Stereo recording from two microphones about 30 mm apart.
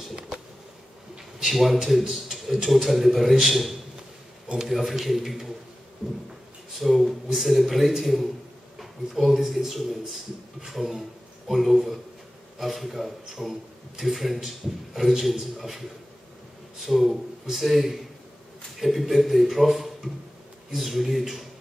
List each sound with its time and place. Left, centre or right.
1.4 s a man's voice: centre
2.3 s a sound: centre
2.7 s a man's voice: centre
6.0 s a sound: right
6.7 s a man's voice: centre
10.7 s a man's voice: centre
16.8 s a man's voice: centre